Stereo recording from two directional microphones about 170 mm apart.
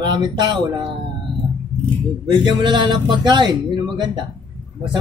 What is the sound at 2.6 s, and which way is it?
A man's voice, 25° right (ahead or behind).